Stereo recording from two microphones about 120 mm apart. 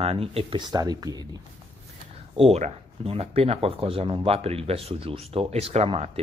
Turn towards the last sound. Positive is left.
turn(degrees=-55)  # may be behind; listen again after turning